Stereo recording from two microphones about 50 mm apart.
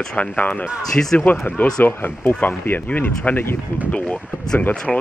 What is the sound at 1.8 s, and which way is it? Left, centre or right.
Speech, left.